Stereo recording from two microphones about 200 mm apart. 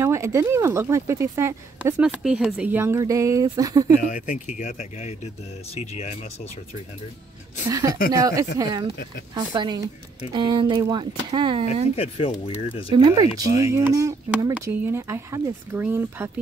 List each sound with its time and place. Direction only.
0.0 s speech: 15° right (ahead or behind)
4.6 s speech: 35° left (ahead or behind)
7.7 s speech: 20° right (ahead or behind)
11.9 s speech: 30° left (ahead or behind)
12.9 s speech: 20° right (ahead or behind)